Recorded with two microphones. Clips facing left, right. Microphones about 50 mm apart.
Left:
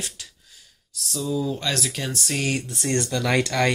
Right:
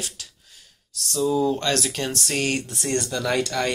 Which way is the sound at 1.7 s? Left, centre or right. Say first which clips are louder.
Right 3 dB; centre.